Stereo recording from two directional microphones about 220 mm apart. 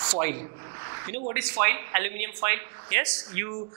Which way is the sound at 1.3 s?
10° right (ahead or behind).